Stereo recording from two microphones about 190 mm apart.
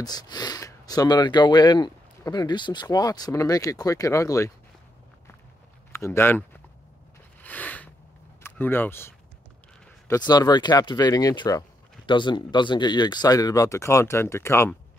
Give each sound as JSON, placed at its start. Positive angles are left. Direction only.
{"t": 0.0, "sound": "speech", "side_deg": 20}
{"t": 5.9, "sound": "speech", "side_deg": 15}
{"t": 7.4, "sound": "a sound", "side_deg": 10}
{"t": 8.4, "sound": "speech", "side_deg": 10}